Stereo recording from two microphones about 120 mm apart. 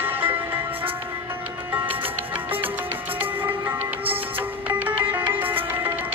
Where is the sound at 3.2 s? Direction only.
15° right (ahead or behind).